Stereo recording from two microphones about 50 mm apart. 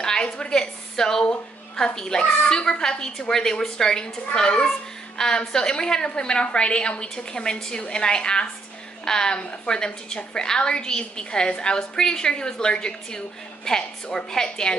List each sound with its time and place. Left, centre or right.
0.0 s a woman's voice: centre